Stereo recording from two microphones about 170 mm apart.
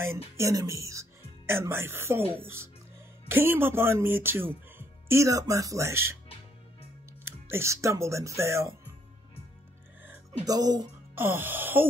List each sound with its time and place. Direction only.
0.4 s speech: 20° right (ahead or behind)
7.2 s speech: 15° right (ahead or behind)
10.4 s speech: 20° right (ahead or behind)
11.2 s speech: 10° right (ahead or behind)